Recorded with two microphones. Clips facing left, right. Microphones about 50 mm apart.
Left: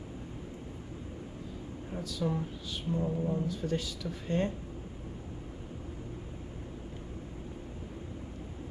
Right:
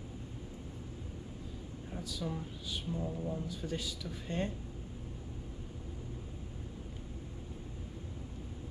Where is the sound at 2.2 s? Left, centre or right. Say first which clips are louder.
Left 7 dB; left.